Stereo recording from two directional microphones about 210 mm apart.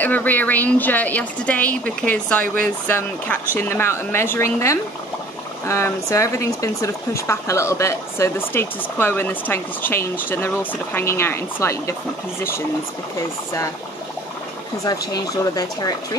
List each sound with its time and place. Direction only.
0.0 s speech: 10° left (ahead or behind)
14.9 s speech: 20° left (ahead or behind)